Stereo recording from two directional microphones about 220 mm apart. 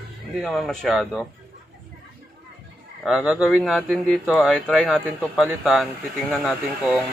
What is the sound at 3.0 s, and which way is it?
Speech, 5° right (ahead or behind).